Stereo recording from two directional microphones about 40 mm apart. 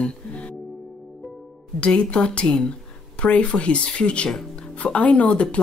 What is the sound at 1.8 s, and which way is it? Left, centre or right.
Speech, left.